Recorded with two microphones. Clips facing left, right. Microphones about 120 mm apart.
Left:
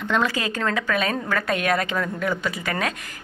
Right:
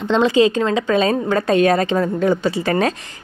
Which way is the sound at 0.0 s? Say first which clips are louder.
Right 9 dB; 25° right (ahead or behind).